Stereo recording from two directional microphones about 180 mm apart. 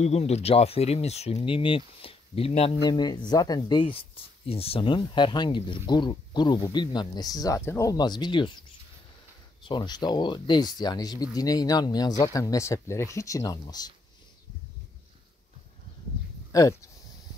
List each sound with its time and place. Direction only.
0.0 s speech: 35° left (ahead or behind)
2.8 s speech: 25° left (ahead or behind)
9.7 s speech: 25° left (ahead or behind)
16.5 s speech: 20° left (ahead or behind)